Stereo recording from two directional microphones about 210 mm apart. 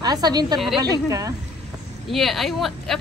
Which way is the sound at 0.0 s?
20° right (ahead or behind).